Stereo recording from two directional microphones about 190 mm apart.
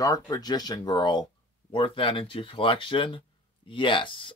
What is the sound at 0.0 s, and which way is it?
Speech, 20° left (ahead or behind).